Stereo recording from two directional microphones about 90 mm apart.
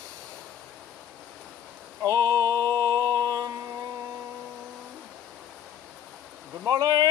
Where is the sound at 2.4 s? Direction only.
45° right (ahead or behind).